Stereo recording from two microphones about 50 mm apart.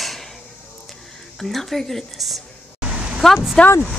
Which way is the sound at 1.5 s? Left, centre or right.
Centre.